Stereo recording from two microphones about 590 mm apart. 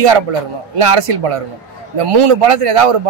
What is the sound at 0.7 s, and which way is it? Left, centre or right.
Speech, right.